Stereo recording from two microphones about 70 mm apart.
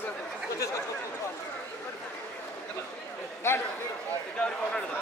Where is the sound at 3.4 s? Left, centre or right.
Left.